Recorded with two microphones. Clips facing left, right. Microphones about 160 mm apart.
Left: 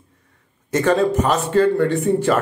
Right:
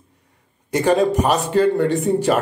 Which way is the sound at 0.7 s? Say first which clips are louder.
Even; 15° right (ahead or behind).